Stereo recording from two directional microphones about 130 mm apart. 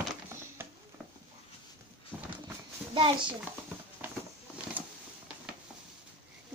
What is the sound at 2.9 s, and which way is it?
Speech, 40° right (ahead or behind).